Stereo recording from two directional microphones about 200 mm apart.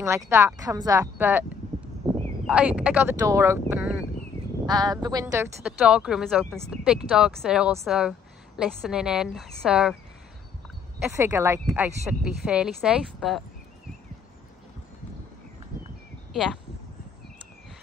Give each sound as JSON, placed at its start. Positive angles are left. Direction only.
{"t": 0.0, "sound": "speech", "side_deg": -15}
{"t": 2.4, "sound": "a woman's voice", "side_deg": -5}
{"t": 5.6, "sound": "speech", "side_deg": -5}
{"t": 11.1, "sound": "speech", "side_deg": -15}